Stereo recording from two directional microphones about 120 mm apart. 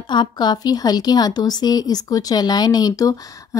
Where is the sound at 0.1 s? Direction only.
40° left (ahead or behind).